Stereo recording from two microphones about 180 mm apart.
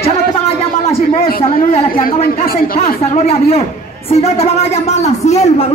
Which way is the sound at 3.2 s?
35° left (ahead or behind).